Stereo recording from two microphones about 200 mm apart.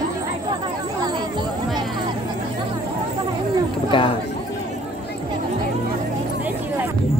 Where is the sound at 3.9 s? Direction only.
25° left (ahead or behind).